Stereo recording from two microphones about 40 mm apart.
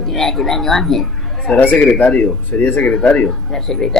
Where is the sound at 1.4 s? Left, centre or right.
Left.